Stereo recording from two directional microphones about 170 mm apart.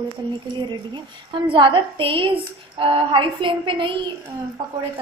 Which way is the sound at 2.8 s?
30° right (ahead or behind).